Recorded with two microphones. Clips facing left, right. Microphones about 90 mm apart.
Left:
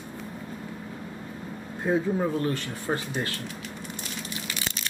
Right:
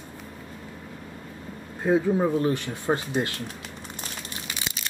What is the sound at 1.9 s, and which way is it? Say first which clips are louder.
Speech: right 3 dB; 15° right (ahead or behind).